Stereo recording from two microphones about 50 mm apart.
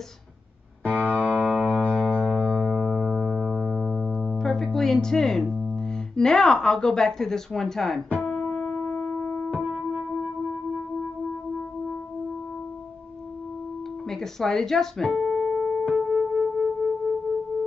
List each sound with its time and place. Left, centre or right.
0.8 s music: right
2.4 s music: centre
5.8 s speech: centre
8.5 s music: centre
9.6 s music: centre
14.0 s music: centre